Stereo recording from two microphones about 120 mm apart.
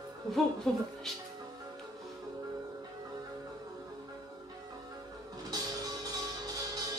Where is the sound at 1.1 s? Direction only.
5° left (ahead or behind).